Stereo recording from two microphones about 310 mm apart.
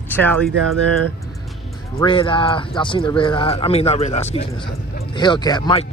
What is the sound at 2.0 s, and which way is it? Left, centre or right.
Speech, centre.